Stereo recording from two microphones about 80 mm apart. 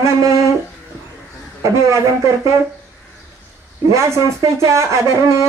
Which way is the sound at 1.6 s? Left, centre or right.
Right.